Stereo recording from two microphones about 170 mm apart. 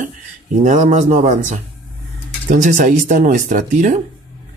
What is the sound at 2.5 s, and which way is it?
Speech, 45° right (ahead or behind).